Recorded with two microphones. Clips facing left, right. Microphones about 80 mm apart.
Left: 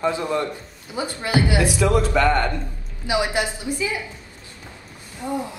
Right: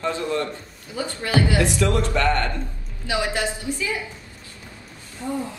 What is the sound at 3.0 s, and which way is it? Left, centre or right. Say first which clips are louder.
Speech: left 2 dB; centre.